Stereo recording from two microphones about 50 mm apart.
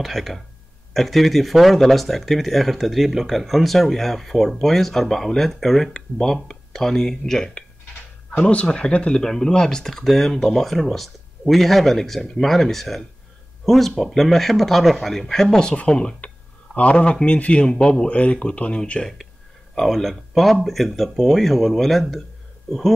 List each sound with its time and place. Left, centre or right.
0.0 s speech: centre
8.3 s speech: left; by 15.7 s centre
15.7 s speech: left
19.8 s speech: centre